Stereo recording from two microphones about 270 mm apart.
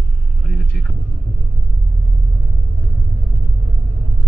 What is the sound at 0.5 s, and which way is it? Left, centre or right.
Vehicle, centre.